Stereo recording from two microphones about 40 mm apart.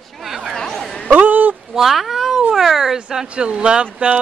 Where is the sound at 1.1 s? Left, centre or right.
Right.